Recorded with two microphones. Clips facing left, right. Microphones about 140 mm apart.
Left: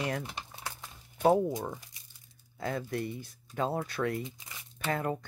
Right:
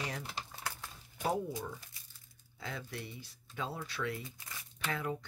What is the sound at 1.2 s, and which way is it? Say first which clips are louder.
Speech: left 9 dB; 55° left (ahead or behind).